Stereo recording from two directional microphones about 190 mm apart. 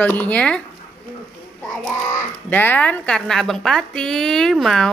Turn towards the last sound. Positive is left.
turn(degrees=0)  # may be behind; listen again after turning